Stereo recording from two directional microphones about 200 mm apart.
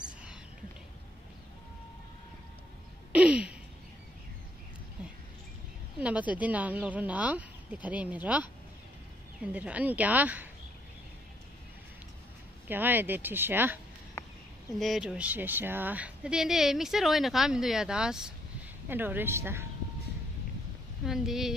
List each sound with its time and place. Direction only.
3.1 s a sound: 5° right (ahead or behind)
5.9 s speech: 5° right (ahead or behind)
12.6 s speech: 10° right (ahead or behind)
14.2 s a sound: 15° left (ahead or behind)
14.8 s speech: centre (ahead or behind)
21.0 s speech: centre (ahead or behind)